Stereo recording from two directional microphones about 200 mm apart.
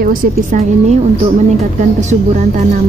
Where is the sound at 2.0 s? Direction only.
40° right (ahead or behind).